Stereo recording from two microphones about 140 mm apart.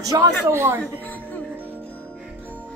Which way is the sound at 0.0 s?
25° right (ahead or behind).